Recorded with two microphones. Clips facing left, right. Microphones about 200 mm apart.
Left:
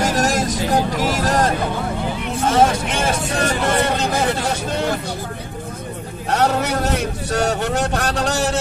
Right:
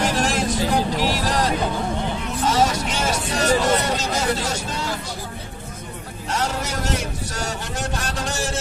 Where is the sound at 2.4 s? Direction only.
55° left (ahead or behind).